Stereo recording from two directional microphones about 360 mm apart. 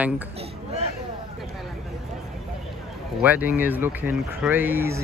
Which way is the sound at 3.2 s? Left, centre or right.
Centre.